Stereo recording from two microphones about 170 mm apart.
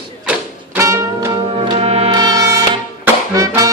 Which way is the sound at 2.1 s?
25° right (ahead or behind).